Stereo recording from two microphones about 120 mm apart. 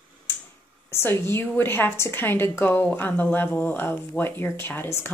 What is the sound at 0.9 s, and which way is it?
A woman's voice, 20° left (ahead or behind).